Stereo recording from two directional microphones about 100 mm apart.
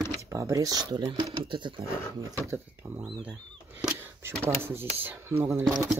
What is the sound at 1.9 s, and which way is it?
Speech, 30° left (ahead or behind).